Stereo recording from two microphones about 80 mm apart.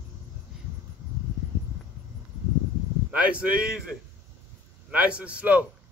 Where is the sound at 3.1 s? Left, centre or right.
Centre.